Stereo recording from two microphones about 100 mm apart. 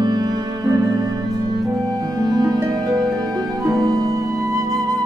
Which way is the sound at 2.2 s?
40° right (ahead or behind).